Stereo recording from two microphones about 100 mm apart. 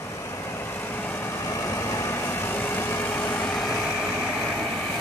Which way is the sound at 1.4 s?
30° left (ahead or behind).